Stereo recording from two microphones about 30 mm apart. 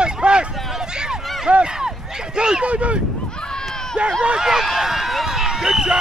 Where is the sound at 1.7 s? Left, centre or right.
Right.